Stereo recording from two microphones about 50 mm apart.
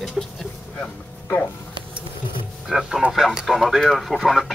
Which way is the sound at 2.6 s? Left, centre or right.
Centre.